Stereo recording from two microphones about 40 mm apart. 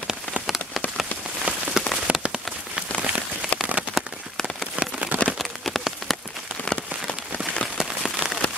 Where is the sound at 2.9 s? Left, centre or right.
Right.